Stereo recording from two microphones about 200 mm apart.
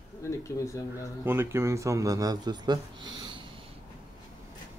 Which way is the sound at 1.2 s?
10° right (ahead or behind).